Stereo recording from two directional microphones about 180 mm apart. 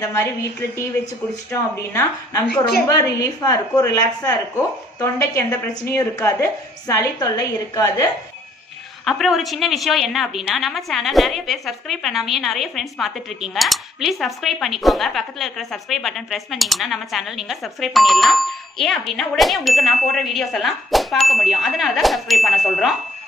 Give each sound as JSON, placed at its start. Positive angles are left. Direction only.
{"t": 0.0, "sound": "a woman's voice", "side_deg": 15}
{"t": 9.0, "sound": "a woman's voice", "side_deg": 0}